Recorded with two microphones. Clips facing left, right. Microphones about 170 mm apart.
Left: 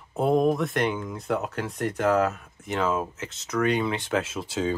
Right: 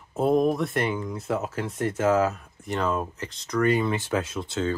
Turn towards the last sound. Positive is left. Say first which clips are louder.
# even
turn(degrees=10)  # may be behind; listen again after turning